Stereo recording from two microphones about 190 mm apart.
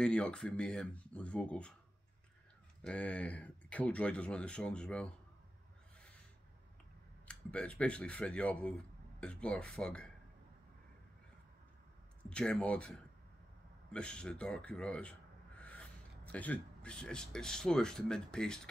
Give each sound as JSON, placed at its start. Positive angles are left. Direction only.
{"t": 0.0, "sound": "speech", "side_deg": 5}
{"t": 2.8, "sound": "speech", "side_deg": 5}
{"t": 7.2, "sound": "speech", "side_deg": 5}
{"t": 12.3, "sound": "speech", "side_deg": 5}